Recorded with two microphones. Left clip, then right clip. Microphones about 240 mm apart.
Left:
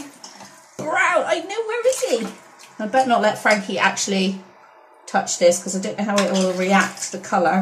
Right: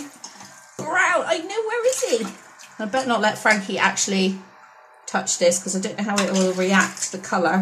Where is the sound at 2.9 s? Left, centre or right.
Centre.